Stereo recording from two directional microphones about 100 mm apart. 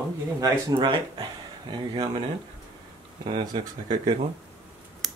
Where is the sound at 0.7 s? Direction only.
55° right (ahead or behind).